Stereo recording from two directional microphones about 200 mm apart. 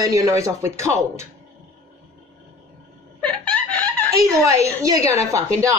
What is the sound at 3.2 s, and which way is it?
Chicken, 5° left (ahead or behind).